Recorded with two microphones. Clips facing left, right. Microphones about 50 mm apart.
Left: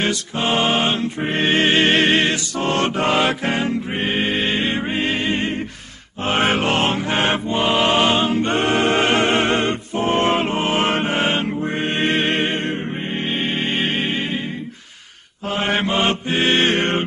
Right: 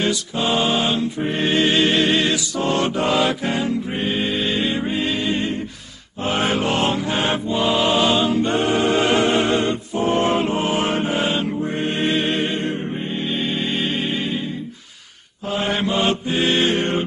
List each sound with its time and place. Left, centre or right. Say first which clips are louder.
0.0 s music: even; left
6.2 s mantra: left 2 dB; left
13.2 s music: left 1 dB; left
15.4 s mantra: left 1 dB; left